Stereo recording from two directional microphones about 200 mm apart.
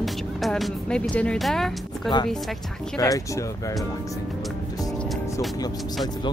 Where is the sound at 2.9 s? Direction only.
15° left (ahead or behind).